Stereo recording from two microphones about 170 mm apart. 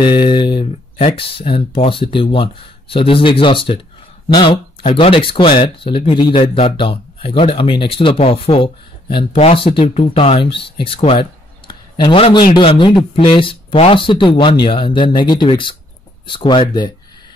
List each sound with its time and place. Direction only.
0.0 s speech: 30° left (ahead or behind)